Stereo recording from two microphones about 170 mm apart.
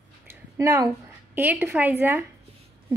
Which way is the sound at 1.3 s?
10° right (ahead or behind).